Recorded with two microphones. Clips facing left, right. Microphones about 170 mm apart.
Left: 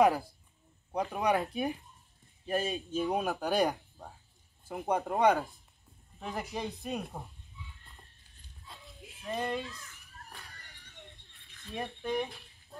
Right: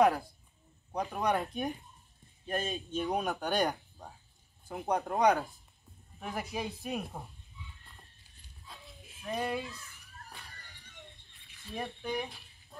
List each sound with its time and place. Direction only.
1.1 s speech: 5° left (ahead or behind)
8.6 s dog: centre (ahead or behind)
11.6 s speech: centre (ahead or behind)